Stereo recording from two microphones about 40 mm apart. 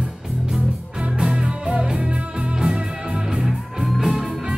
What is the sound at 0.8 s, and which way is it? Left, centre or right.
Music, right.